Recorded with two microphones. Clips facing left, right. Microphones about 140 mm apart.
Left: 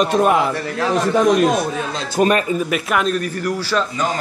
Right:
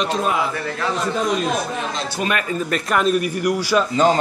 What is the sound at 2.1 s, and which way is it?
Speech, 45° left (ahead or behind).